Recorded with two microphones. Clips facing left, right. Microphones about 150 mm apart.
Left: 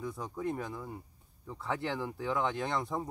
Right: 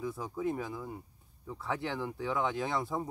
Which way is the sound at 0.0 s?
Centre (ahead or behind).